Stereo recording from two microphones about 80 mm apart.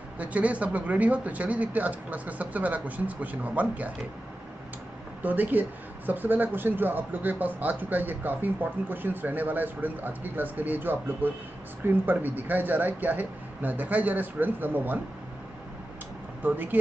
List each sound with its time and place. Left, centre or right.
0.2 s speech: centre
5.2 s speech: right
16.4 s speech: right